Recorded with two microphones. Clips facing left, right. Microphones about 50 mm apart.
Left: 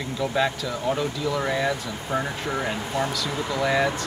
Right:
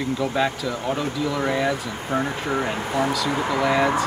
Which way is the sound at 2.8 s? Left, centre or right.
Right.